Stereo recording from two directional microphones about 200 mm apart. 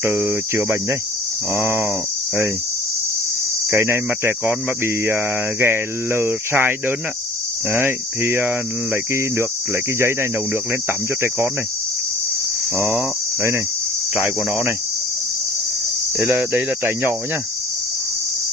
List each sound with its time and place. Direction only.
0.0 s speech: 10° right (ahead or behind)
3.7 s speech: 10° right (ahead or behind)
7.7 s speech: 10° right (ahead or behind)
14.1 s speech: 5° right (ahead or behind)
16.2 s speech: 10° right (ahead or behind)